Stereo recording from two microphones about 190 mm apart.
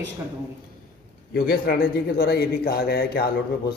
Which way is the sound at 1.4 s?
50° left (ahead or behind).